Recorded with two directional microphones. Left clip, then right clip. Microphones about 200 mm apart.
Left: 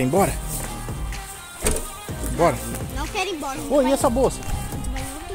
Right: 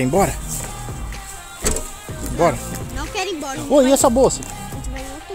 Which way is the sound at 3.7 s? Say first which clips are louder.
Right 5 dB; 45° right (ahead or behind).